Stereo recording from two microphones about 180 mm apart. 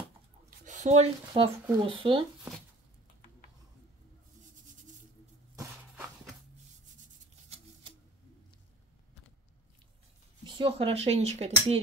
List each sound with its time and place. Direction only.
0.7 s speech: 40° right (ahead or behind)
7.4 s a sound: 30° right (ahead or behind)
10.4 s speech: 25° right (ahead or behind)